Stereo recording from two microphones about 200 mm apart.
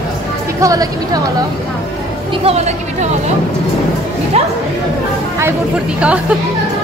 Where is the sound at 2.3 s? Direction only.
30° right (ahead or behind).